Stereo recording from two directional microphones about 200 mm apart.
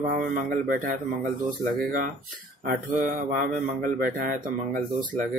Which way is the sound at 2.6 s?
40° right (ahead or behind).